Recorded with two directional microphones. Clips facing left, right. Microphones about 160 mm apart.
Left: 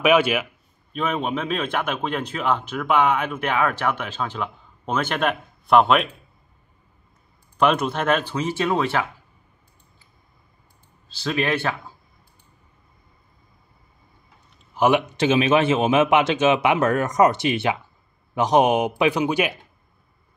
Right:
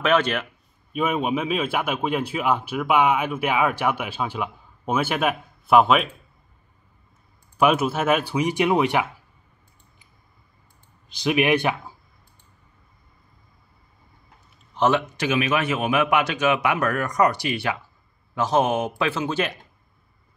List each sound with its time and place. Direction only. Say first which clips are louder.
0.0 s a man's voice: left 3 dB; 10° left (ahead or behind)
0.9 s a man's voice: right 2 dB; 10° right (ahead or behind)
7.5 s a man's voice: even; 5° right (ahead or behind)
11.1 s a man's voice: right 3 dB; 15° right (ahead or behind)
14.7 s speech: left 2 dB; 10° left (ahead or behind)
15.1 s a man's voice: left 5 dB; 25° left (ahead or behind)